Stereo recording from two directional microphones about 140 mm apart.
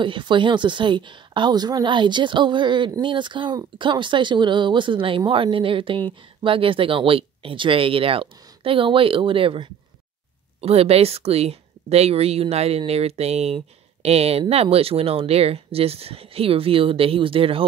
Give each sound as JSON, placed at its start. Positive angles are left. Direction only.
{"t": 0.0, "sound": "speech", "side_deg": -35}